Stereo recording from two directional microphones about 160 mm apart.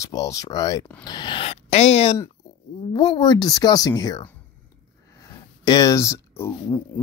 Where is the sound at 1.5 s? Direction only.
45° left (ahead or behind).